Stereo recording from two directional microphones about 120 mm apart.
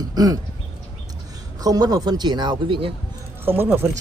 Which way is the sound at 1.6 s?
30° right (ahead or behind).